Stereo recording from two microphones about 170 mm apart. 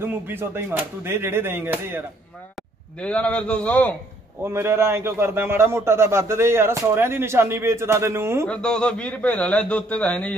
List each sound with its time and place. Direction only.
0.0 s a man's voice: 10° right (ahead or behind)
3.0 s a man's voice: 5° left (ahead or behind)
4.5 s a man's voice: 15° right (ahead or behind)
8.5 s a man's voice: 5° left (ahead or behind)